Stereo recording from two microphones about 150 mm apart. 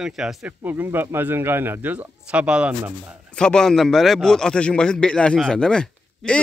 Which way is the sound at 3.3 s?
5° left (ahead or behind).